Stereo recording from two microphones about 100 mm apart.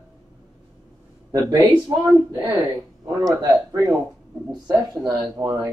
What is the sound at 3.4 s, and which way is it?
Speech, 40° right (ahead or behind).